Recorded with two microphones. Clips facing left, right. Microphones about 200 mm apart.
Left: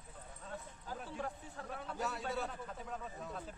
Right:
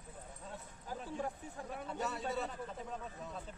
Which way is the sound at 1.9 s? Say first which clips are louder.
Right 1 dB; centre (ahead or behind).